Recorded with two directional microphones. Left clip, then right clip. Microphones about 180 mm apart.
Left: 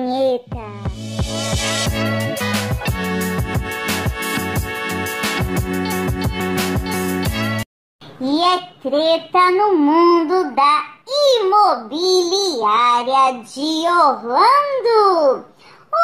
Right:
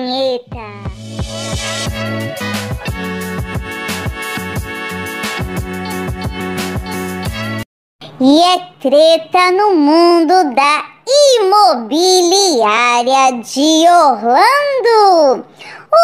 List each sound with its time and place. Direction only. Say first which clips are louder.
0.0 s music: right 2 dB; centre (ahead or behind)
8.2 s child singing: right 7 dB; 45° right (ahead or behind)